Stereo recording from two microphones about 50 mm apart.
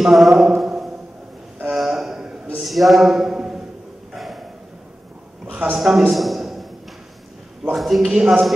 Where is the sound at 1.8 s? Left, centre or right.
Centre.